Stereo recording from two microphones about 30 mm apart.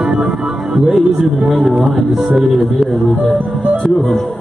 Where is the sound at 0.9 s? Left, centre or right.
Centre.